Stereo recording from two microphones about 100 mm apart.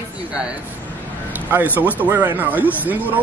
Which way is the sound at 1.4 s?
20° right (ahead or behind).